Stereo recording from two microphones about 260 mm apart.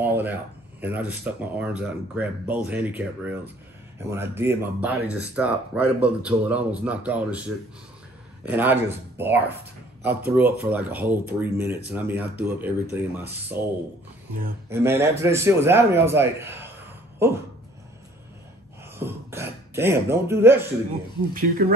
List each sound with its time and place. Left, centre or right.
0.0 s speech: centre
14.7 s speech: centre
18.9 s speech: centre
21.3 s speech: right